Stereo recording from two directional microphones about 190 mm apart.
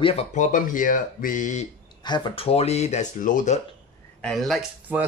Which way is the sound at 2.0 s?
25° left (ahead or behind).